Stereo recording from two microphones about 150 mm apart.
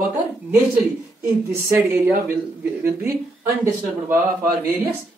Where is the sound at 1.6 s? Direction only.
15° right (ahead or behind).